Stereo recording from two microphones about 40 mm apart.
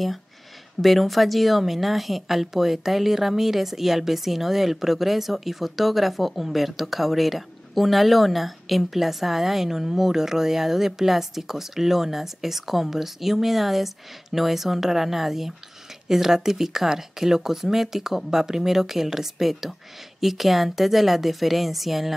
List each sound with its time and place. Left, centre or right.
0.7 s a woman's voice: centre